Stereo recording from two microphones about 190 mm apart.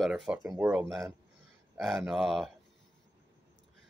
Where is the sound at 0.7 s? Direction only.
Centre (ahead or behind).